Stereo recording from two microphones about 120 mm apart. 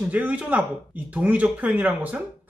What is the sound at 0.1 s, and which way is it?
Speech, 10° right (ahead or behind).